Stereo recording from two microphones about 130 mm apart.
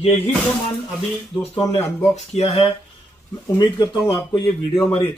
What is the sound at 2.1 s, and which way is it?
Speech, 50° left (ahead or behind).